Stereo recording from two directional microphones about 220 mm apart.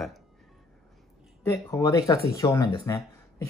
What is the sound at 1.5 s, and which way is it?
Speech, 15° left (ahead or behind).